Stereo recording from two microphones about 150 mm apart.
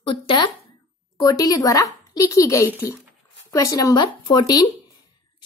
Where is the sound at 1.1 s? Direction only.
20° left (ahead or behind).